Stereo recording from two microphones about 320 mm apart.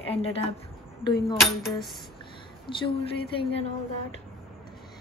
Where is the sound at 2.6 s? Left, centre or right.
Centre.